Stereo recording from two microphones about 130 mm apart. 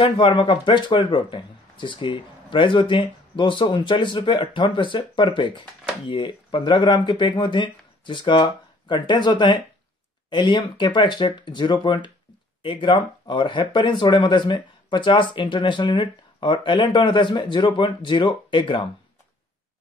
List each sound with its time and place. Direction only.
0.0 s speech: 40° left (ahead or behind)